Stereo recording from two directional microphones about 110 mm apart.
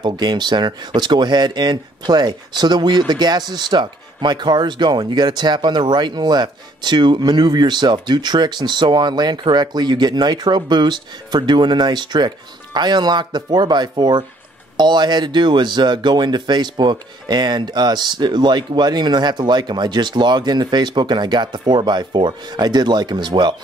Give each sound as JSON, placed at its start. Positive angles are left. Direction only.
{"t": 0.0, "sound": "speech", "side_deg": -40}